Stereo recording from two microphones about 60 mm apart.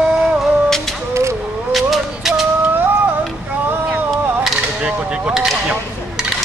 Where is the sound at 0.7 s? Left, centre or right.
Centre.